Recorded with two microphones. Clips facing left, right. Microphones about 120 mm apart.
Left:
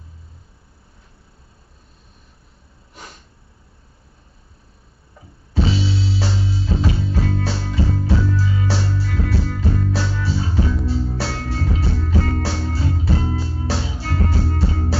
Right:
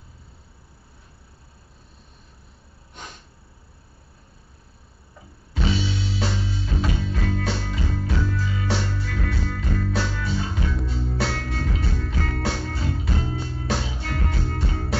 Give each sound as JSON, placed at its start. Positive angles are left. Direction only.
{"t": 5.5, "sound": "music", "side_deg": 30}